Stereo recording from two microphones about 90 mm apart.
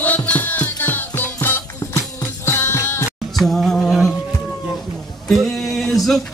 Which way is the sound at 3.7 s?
10° left (ahead or behind).